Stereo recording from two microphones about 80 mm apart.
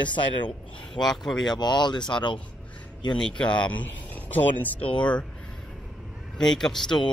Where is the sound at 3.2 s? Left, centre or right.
Centre.